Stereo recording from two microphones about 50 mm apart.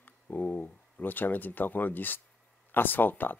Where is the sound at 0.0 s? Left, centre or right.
Left.